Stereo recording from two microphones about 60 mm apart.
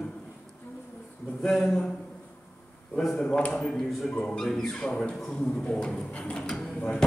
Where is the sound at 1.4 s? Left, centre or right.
Centre.